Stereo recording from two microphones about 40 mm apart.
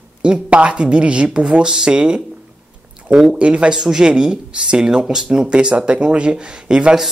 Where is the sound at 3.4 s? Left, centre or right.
Right.